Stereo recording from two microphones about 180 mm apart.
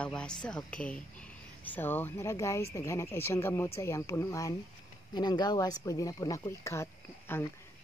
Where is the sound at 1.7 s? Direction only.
10° left (ahead or behind).